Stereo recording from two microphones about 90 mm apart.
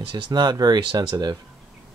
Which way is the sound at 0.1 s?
55° right (ahead or behind).